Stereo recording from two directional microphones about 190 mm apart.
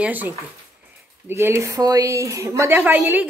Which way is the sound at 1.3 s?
15° right (ahead or behind).